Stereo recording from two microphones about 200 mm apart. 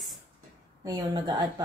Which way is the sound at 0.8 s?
20° right (ahead or behind).